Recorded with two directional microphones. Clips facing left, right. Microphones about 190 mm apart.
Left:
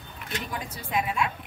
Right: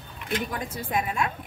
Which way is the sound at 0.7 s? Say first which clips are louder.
Left 2 dB; 50° right (ahead or behind).